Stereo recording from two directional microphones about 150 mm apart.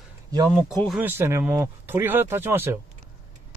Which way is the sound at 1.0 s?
15° right (ahead or behind).